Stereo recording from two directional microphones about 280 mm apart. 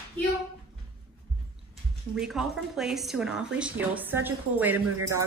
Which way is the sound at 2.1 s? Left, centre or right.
Centre.